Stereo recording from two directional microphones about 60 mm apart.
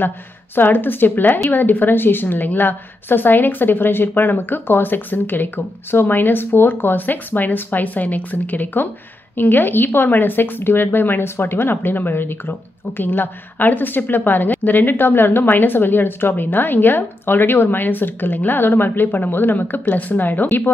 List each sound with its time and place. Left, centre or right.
0.6 s speech: left